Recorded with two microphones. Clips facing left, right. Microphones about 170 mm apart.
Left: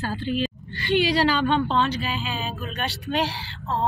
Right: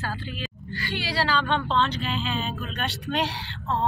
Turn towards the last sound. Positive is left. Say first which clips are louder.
# left 1 dB
turn(degrees=0)  # may be behind; listen again after turning